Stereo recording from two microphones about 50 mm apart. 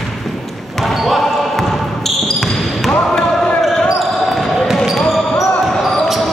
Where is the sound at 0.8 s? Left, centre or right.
Centre.